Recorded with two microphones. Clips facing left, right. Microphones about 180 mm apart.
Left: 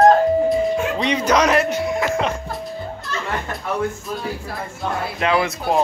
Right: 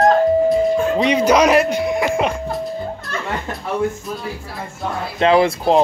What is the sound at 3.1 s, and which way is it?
Music, 55° right (ahead or behind).